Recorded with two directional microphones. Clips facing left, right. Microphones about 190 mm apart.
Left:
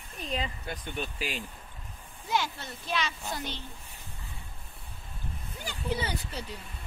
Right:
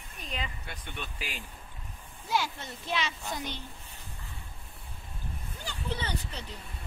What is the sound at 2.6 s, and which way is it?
Speech, 25° right (ahead or behind).